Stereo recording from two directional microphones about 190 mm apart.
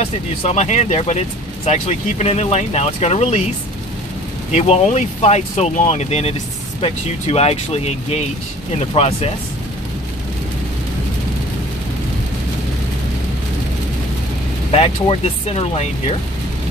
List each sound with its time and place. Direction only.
0.0 s speech: 35° left (ahead or behind)
4.5 s speech: 35° left (ahead or behind)
14.7 s speech: 30° left (ahead or behind)